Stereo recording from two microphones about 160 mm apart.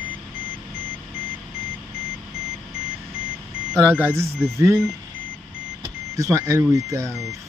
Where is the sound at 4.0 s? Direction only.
15° right (ahead or behind).